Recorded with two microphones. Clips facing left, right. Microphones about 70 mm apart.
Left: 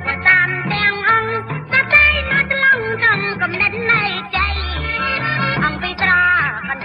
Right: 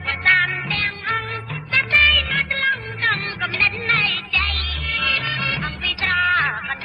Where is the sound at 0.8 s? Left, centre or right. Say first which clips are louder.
Left 12 dB; left.